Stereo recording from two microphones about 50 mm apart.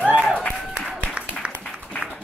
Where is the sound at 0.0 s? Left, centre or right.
Right.